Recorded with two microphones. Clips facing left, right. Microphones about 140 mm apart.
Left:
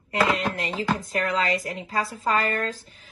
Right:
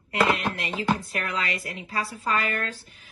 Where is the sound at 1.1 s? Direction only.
35° left (ahead or behind).